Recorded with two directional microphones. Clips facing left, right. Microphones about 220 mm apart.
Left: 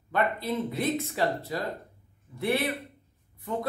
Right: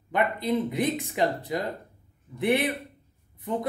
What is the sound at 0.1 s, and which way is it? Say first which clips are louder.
A man's voice: right 3 dB; 15° right (ahead or behind).